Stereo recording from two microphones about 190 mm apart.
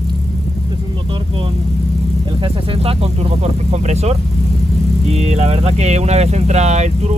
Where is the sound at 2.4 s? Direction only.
30° right (ahead or behind).